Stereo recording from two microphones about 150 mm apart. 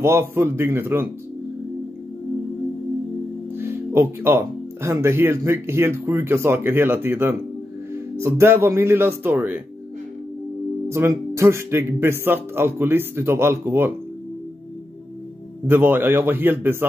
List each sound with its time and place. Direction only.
0.0 s speech: 15° right (ahead or behind)
3.5 s speech: 15° right (ahead or behind)
10.9 s speech: 20° right (ahead or behind)
15.6 s speech: 15° right (ahead or behind)